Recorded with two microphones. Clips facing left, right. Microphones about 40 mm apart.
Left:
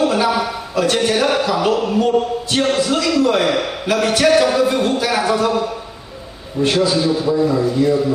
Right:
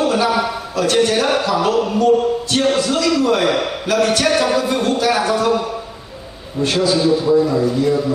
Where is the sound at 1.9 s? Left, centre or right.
Centre.